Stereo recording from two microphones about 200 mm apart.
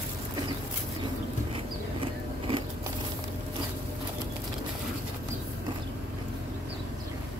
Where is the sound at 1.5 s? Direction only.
25° right (ahead or behind).